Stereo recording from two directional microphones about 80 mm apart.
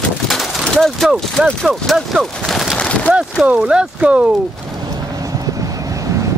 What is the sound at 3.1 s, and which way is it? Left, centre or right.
Speech, centre.